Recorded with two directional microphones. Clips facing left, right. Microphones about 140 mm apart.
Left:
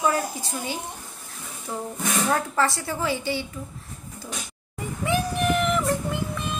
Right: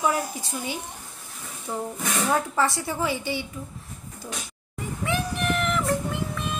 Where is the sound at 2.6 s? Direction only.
15° right (ahead or behind).